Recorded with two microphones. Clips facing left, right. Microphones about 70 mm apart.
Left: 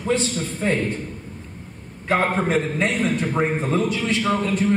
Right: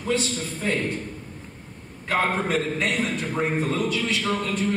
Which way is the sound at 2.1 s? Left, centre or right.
Centre.